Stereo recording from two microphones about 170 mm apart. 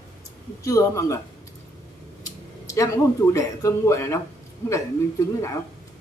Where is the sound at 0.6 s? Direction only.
20° left (ahead or behind).